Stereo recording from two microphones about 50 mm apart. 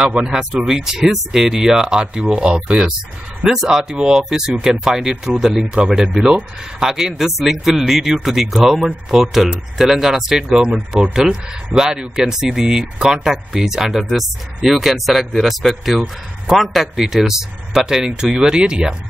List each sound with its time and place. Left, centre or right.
0.0 s speech: centre